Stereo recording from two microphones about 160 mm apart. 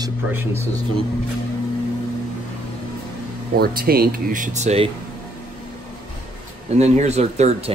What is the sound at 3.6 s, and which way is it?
Speech, 70° right (ahead or behind).